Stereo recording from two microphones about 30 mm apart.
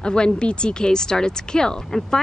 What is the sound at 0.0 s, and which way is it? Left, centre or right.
Speech, left.